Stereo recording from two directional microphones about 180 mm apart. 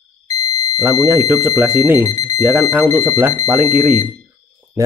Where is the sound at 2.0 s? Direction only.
20° left (ahead or behind).